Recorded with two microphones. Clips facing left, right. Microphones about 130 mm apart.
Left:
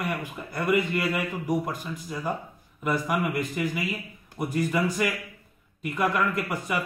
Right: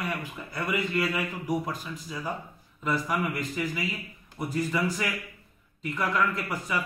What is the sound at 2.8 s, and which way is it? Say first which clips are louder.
A man's voice: left 2 dB; 10° left (ahead or behind).